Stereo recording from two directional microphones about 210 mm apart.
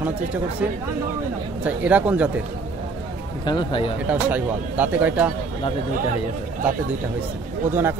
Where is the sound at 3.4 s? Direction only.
20° left (ahead or behind).